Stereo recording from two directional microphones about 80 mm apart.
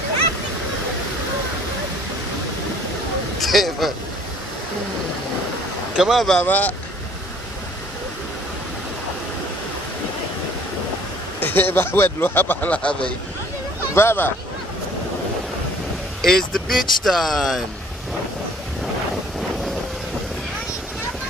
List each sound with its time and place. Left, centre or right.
3.3 s a sound: centre
5.9 s speech: centre
6.4 s speech: left
11.4 s speech: left
13.9 s speech: left
16.2 s speech: centre